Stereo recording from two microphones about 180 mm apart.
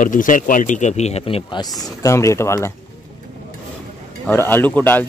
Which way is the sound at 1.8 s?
20° left (ahead or behind).